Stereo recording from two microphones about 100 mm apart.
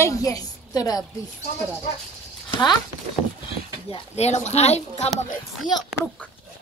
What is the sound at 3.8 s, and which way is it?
Speech, 80° left.